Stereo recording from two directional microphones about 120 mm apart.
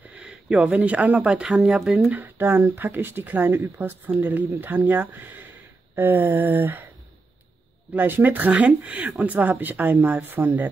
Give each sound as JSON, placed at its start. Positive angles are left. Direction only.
{"t": 0.1, "sound": "speech", "side_deg": -5}
{"t": 2.0, "sound": "speech", "side_deg": -15}
{"t": 7.9, "sound": "speech", "side_deg": -15}